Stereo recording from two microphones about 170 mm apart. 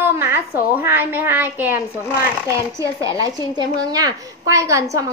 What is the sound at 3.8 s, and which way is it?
A woman's voice, 20° right (ahead or behind).